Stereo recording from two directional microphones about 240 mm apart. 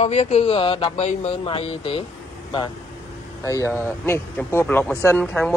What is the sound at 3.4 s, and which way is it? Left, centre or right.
Speech, centre.